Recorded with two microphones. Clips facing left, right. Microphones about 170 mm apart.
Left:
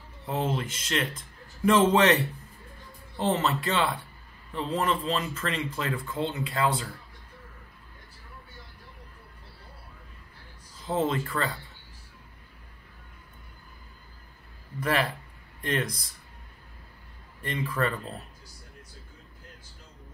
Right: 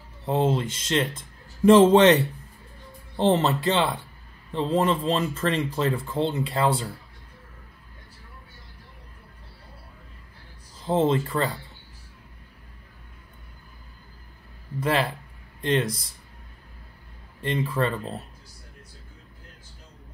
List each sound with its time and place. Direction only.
0.3 s speech: 25° right (ahead or behind)
10.9 s speech: 30° right (ahead or behind)
14.8 s speech: 25° right (ahead or behind)
17.4 s speech: 25° right (ahead or behind)